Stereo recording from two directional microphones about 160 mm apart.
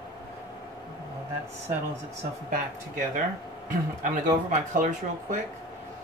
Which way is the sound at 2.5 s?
55° right (ahead or behind).